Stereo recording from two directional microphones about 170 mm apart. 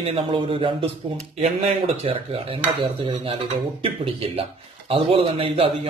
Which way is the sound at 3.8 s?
35° right (ahead or behind).